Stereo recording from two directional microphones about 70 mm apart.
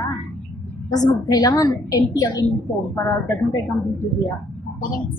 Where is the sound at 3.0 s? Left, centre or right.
Left.